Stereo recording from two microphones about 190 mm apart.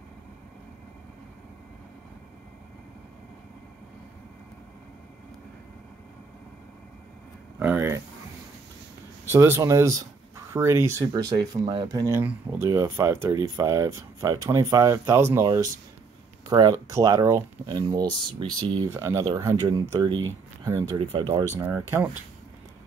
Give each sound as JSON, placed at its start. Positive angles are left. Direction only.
{"t": 7.5, "sound": "speech", "side_deg": -10}
{"t": 9.3, "sound": "speech", "side_deg": -15}
{"t": 18.9, "sound": "speech", "side_deg": -15}
{"t": 21.5, "sound": "speech", "side_deg": -10}